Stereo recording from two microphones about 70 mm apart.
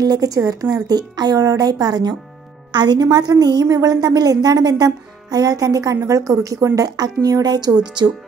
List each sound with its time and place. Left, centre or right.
0.0 s speech: right
0.8 s speech: right
3.6 s speech: right